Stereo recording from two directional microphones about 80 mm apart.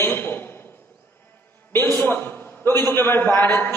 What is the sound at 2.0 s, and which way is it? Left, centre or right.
A man's voice, left.